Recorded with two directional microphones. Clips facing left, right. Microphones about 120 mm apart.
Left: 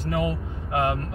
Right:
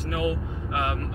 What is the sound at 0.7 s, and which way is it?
Speech, 25° left (ahead or behind).